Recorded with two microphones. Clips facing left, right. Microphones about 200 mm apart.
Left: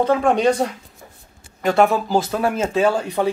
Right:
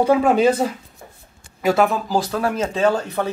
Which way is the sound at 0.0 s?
5° right (ahead or behind).